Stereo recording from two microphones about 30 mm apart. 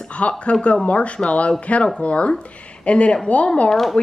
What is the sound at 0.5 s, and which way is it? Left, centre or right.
Speech, left.